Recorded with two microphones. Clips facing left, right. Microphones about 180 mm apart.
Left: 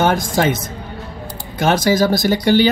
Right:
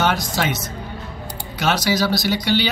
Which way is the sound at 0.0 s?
50° left (ahead or behind).